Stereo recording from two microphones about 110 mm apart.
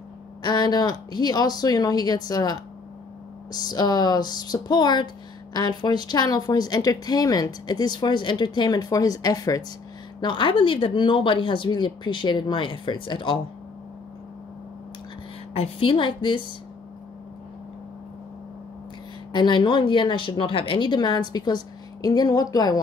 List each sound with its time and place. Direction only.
0.4 s speech: 40° left (ahead or behind)
10.2 s a woman's voice: 50° left (ahead or behind)
15.5 s a woman's voice: 60° left (ahead or behind)
19.3 s a woman's voice: 45° left (ahead or behind)